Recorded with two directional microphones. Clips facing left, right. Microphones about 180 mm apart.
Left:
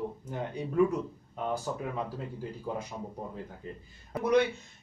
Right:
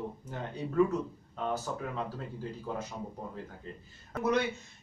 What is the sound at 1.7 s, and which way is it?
Speech, 15° left (ahead or behind).